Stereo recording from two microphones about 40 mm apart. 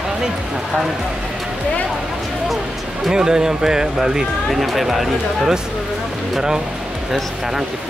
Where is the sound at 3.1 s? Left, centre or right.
Centre.